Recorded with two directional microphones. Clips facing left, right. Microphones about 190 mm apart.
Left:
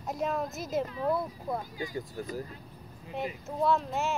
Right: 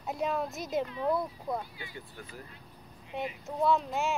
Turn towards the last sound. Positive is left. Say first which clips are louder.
# even
turn(degrees=0)  # may be behind; listen again after turning